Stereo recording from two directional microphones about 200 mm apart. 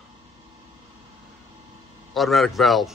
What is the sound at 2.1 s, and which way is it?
Speech, centre (ahead or behind).